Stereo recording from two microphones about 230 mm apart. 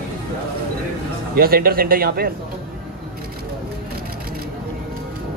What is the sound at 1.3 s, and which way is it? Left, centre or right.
Speech, right.